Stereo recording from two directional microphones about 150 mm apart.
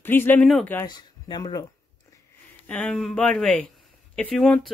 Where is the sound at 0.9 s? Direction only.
30° left (ahead or behind).